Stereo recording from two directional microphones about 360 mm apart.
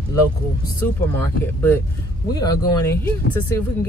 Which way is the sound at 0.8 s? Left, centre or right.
Centre.